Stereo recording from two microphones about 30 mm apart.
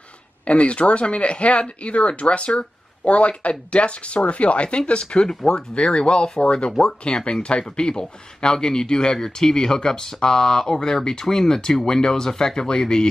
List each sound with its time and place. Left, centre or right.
0.5 s speech: left
7.8 s speech: left